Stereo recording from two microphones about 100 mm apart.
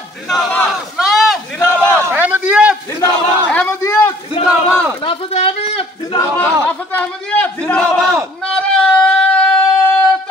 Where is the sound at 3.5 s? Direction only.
20° left (ahead or behind).